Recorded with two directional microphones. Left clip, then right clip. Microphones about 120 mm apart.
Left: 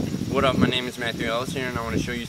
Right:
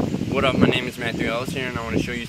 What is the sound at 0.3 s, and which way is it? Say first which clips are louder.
Speech: right 2 dB; centre (ahead or behind).